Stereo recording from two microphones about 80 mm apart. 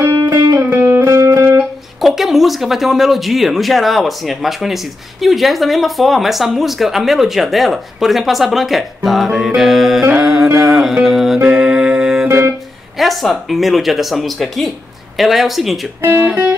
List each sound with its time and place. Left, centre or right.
0.6 s music: right
2.0 s speech: centre
10.1 s music: centre
12.3 s music: right
12.9 s speech: centre
16.0 s speech: right